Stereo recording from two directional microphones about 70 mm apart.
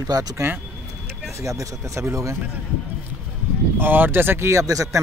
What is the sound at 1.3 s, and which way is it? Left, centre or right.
Speech, right.